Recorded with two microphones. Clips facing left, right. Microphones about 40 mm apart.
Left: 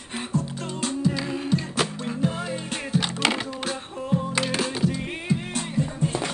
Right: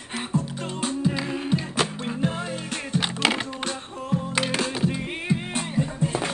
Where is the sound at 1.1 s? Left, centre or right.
Centre.